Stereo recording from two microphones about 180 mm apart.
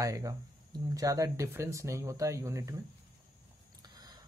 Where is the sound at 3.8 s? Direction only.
25° right (ahead or behind).